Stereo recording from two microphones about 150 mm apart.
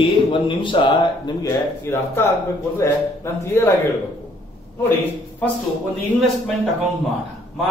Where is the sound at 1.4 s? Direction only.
15° left (ahead or behind).